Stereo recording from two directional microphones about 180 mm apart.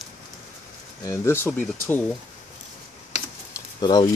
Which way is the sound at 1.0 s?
15° left (ahead or behind).